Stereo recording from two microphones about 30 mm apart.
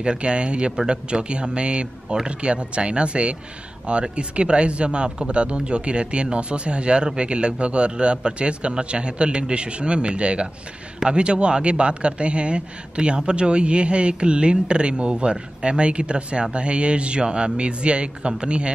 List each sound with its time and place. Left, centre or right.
0.0 s a man's voice: right